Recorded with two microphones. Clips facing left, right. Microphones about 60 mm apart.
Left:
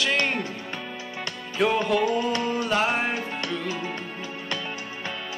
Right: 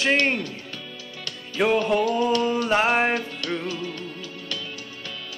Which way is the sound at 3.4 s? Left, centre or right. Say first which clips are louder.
Right 1 dB; left.